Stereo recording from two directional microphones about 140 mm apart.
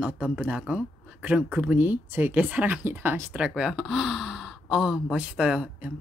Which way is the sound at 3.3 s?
5° right (ahead or behind).